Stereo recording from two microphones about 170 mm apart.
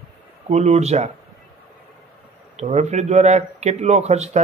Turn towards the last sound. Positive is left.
turn(degrees=-40)  # may be behind; listen again after turning